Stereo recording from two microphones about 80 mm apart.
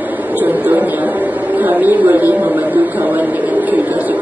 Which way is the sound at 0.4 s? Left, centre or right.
Right.